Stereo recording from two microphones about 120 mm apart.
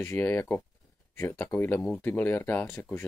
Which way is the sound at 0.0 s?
25° left (ahead or behind).